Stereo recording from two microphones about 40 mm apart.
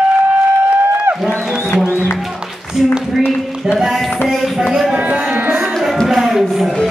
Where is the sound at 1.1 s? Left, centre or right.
Right.